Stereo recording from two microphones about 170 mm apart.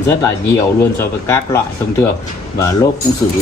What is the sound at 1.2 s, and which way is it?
Speech, 15° left (ahead or behind).